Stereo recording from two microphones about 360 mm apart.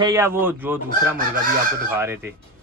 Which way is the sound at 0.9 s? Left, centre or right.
Right.